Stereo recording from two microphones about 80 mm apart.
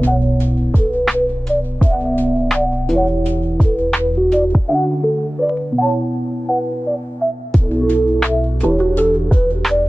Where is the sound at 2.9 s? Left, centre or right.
Centre.